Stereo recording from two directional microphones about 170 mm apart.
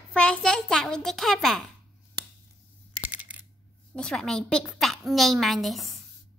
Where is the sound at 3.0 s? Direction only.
10° right (ahead or behind).